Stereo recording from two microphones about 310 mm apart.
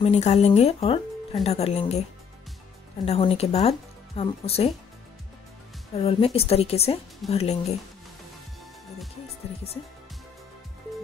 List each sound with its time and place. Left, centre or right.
0.0 s speech: left
3.1 s speech: centre
5.9 s speech: centre